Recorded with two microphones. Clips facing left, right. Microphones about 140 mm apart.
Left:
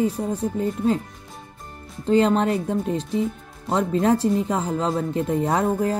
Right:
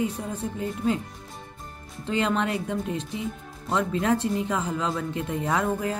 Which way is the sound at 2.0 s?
35° left (ahead or behind).